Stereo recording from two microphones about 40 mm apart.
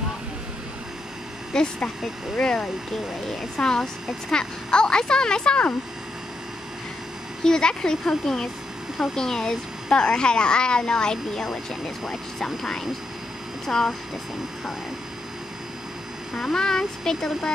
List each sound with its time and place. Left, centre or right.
1.5 s speech: left
7.4 s speech: centre
11.4 s speech: centre
16.3 s speech: centre